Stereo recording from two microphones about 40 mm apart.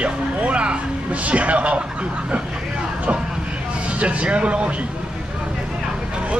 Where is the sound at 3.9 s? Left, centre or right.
Right.